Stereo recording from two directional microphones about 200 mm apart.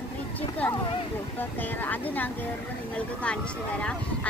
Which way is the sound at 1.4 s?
10° left (ahead or behind).